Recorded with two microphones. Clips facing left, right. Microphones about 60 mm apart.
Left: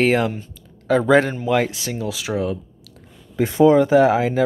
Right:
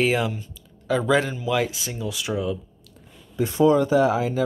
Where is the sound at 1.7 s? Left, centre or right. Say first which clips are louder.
Left 5 dB; left.